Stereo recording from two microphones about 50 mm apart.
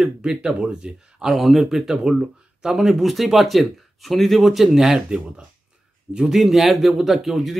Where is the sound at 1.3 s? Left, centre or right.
Centre.